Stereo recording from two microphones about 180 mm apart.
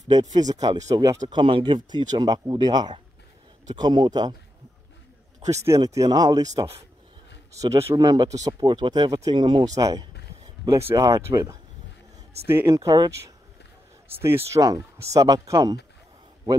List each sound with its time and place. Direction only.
0.1 s speech: 20° right (ahead or behind)
5.9 s speech: 20° right (ahead or behind)